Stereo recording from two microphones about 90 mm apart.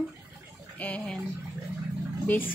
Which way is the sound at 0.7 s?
15° left (ahead or behind).